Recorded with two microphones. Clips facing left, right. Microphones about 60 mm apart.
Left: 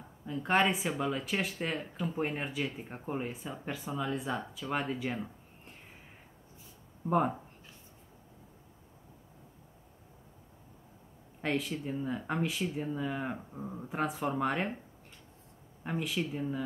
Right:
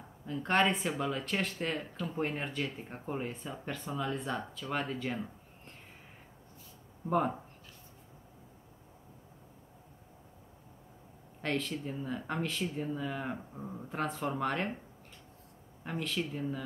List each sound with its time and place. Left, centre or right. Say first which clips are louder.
0.3 s speech: left 1 dB; centre
7.1 s speech: left 1 dB; centre
11.4 s speech: left 1 dB; centre
15.8 s speech: left 2 dB; centre